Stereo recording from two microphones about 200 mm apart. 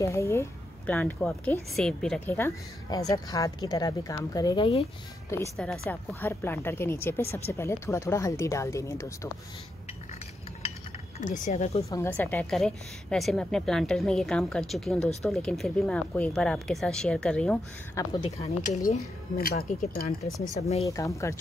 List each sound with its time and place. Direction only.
0.0 s a woman's voice: 15° left (ahead or behind)
5.3 s a woman's voice: 15° left (ahead or behind)
11.1 s speech: 40° left (ahead or behind)
11.9 s a woman's voice: 15° left (ahead or behind)
18.0 s a woman's voice: 15° left (ahead or behind)
18.9 s speech: 50° left (ahead or behind)
20.5 s speech: 30° left (ahead or behind)
20.8 s a woman's voice: 15° left (ahead or behind)